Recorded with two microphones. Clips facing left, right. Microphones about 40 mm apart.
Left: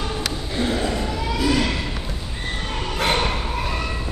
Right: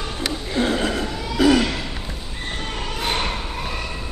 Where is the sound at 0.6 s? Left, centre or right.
Right.